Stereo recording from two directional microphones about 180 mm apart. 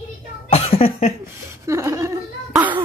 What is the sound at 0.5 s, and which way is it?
Cough, 35° left (ahead or behind).